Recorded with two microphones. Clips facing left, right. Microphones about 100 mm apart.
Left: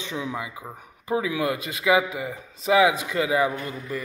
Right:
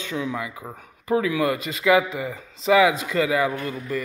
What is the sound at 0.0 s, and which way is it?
A man's voice, 20° left (ahead or behind).